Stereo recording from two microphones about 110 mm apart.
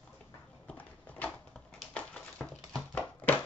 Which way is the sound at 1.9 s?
10° left (ahead or behind).